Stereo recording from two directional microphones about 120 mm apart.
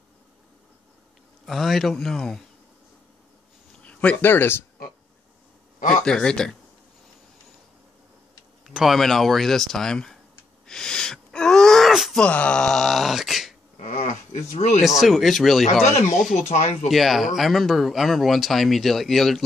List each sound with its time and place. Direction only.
1.4 s speech: centre (ahead or behind)
3.8 s speech: 10° left (ahead or behind)
5.8 s a sound: 90° left
6.0 s speech: 5° left (ahead or behind)
8.6 s speech: centre (ahead or behind)
10.7 s wheeze: 5° left (ahead or behind)
12.2 s speech: 10° left (ahead or behind)
13.7 s a sound: 90° left
14.8 s speech: centre (ahead or behind)
15.8 s speech: 70° left (ahead or behind)
16.9 s speech: centre (ahead or behind)